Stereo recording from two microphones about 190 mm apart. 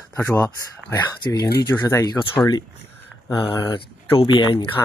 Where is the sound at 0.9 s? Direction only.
20° left (ahead or behind).